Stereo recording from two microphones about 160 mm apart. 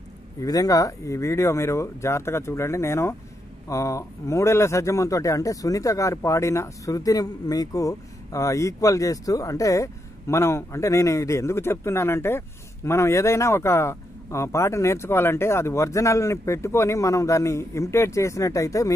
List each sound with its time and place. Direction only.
0.4 s speech: 20° left (ahead or behind)